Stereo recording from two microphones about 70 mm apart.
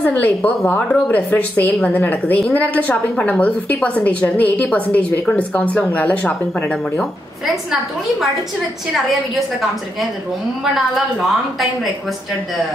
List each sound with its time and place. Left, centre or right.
0.0 s a woman's voice: left